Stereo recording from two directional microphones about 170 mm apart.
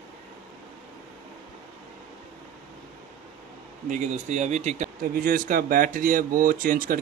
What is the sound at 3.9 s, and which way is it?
Speech, 45° right (ahead or behind).